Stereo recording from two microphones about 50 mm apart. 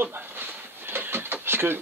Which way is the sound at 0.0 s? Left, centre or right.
Right.